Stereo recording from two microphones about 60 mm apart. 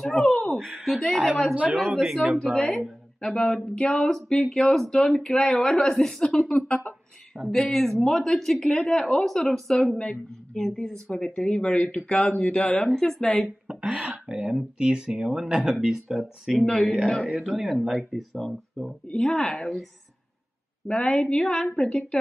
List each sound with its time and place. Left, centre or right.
0.0 s speech: centre
0.5 s a sound: centre
0.8 s speech: centre
1.5 s speech: right
2.1 s speech: centre
13.7 s speech: centre
16.5 s speech: centre
17.3 s speech: centre